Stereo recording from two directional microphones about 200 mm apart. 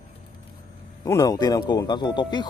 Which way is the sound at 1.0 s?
15° left (ahead or behind).